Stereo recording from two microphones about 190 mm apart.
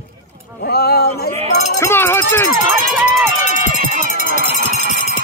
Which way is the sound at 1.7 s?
15° left (ahead or behind).